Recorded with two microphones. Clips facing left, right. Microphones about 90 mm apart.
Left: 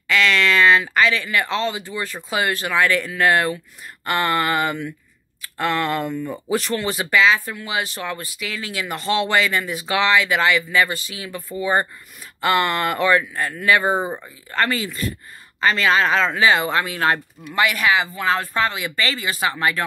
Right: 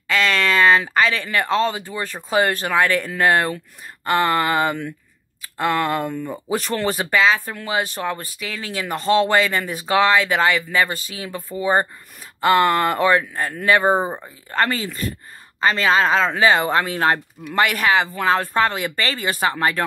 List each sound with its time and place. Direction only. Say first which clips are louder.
0.1 s speech: left 1 dB; 35° right (ahead or behind)
17.6 s speech: right 1 dB; 50° right (ahead or behind)